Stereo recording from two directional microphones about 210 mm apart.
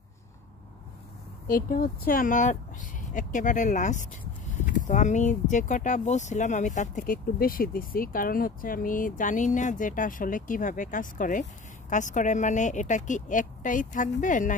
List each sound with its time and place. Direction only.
1.5 s speech: 40° left (ahead or behind)